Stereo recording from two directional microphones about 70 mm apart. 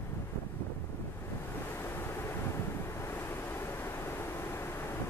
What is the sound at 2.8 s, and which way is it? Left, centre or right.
Waves, left.